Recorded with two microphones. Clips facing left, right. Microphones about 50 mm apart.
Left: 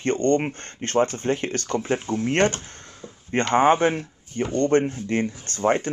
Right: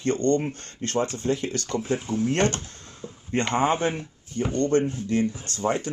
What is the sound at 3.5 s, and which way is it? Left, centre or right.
Speech, left.